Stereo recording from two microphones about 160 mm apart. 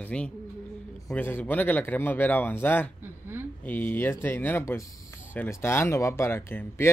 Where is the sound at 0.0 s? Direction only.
10° left (ahead or behind).